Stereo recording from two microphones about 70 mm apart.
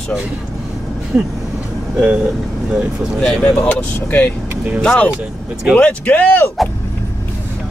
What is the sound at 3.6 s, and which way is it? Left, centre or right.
Speech, left.